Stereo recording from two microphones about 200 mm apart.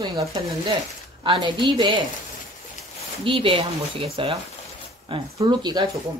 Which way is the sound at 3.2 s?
25° right (ahead or behind).